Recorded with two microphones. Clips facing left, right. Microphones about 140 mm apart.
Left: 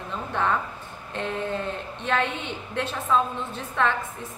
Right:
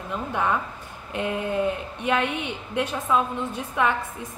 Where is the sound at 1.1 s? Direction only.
15° right (ahead or behind).